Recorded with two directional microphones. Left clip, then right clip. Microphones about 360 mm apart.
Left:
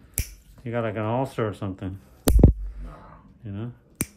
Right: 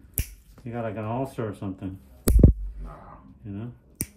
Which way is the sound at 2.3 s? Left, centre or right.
Centre.